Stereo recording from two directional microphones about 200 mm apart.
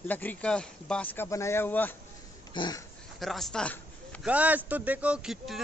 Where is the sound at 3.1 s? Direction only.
Centre (ahead or behind).